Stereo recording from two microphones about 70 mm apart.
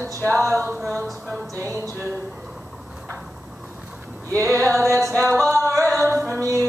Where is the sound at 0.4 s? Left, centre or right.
Right.